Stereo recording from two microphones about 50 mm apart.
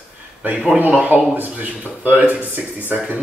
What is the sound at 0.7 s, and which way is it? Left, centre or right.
Speech, right.